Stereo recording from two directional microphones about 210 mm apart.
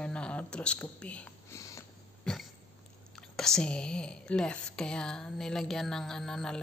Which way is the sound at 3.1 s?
Centre (ahead or behind).